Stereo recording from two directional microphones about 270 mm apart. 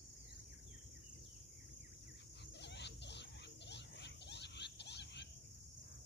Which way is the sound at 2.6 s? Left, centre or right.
Left.